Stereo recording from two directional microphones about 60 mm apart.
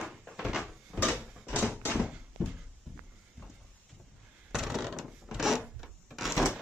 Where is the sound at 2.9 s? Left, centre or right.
Centre.